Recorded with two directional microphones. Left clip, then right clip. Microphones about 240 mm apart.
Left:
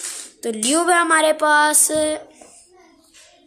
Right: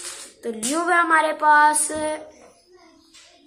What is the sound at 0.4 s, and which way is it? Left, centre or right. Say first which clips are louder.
A woman's voice: left 5 dB; left.